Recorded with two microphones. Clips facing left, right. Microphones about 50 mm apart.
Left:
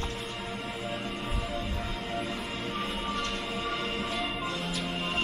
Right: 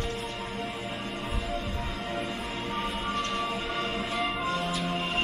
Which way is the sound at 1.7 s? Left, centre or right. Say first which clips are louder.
Right 1 dB; right.